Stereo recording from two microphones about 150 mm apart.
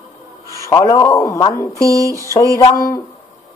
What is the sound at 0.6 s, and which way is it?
A man's voice, 20° left (ahead or behind).